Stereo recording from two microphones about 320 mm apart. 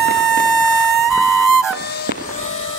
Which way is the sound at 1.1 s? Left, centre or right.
Centre.